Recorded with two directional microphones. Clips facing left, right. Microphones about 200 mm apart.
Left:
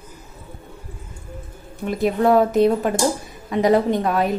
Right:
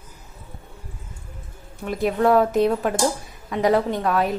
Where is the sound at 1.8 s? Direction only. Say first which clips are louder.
Left 2 dB; 5° right (ahead or behind).